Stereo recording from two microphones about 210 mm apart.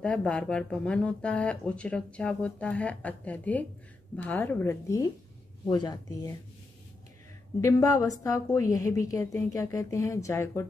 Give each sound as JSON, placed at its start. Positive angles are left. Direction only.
{"t": 0.0, "sound": "a woman's voice", "side_deg": 5}
{"t": 7.6, "sound": "a woman's voice", "side_deg": 15}